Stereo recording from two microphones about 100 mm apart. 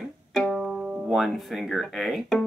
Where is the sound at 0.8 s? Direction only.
15° right (ahead or behind).